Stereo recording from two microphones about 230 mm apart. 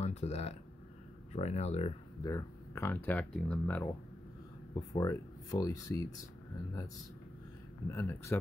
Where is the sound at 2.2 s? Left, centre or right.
Centre.